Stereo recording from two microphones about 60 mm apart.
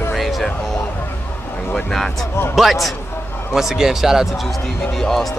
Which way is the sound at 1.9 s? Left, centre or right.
Centre.